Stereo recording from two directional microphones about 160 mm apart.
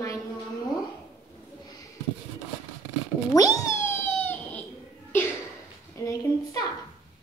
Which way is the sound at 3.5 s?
15° left (ahead or behind).